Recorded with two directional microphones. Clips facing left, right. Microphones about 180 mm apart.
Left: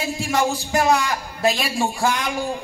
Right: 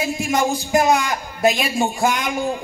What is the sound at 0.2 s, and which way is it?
A man's voice, 20° right (ahead or behind).